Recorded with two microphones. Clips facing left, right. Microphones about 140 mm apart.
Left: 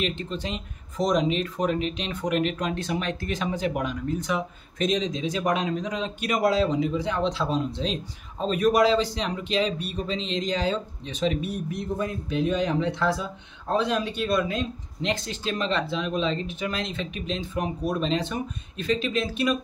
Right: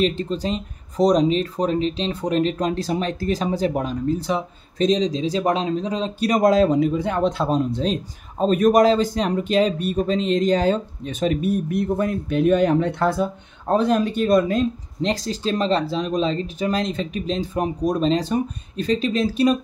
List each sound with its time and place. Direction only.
0.0 s speech: 35° right (ahead or behind)